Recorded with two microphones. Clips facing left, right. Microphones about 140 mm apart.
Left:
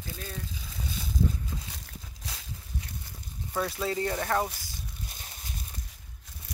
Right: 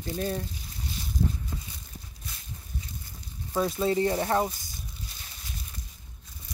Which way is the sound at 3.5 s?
25° right (ahead or behind).